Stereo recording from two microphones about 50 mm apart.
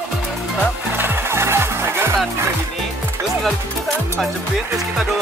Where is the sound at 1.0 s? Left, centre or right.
Right.